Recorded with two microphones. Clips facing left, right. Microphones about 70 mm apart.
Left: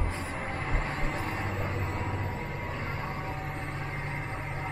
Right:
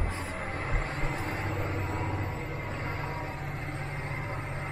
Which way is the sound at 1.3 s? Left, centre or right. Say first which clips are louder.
Even; centre.